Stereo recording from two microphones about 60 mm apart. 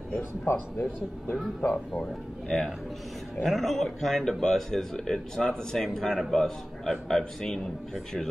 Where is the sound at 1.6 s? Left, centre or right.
Left.